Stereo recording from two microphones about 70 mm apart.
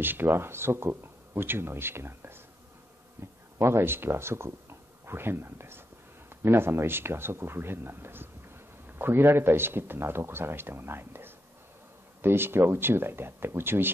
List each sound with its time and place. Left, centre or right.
0.0 s a man's voice: right
3.5 s a man's voice: right